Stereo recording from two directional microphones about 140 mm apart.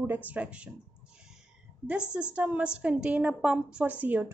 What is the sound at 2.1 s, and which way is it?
A woman's voice, 10° right (ahead or behind).